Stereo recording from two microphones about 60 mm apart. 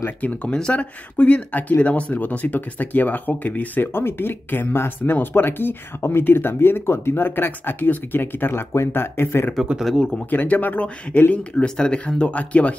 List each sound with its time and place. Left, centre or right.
0.2 s speech: left
9.8 s speech: centre
10.3 s speech: left
11.6 s speech: centre